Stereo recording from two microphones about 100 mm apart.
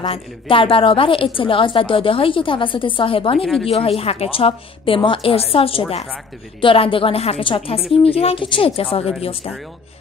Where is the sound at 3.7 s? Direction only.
80° left.